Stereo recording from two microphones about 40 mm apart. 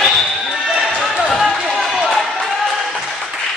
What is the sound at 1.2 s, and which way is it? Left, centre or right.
Run, centre.